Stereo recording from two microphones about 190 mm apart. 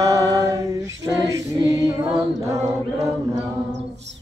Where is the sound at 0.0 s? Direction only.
15° right (ahead or behind).